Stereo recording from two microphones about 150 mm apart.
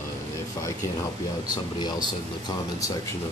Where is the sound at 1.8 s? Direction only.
30° left (ahead or behind).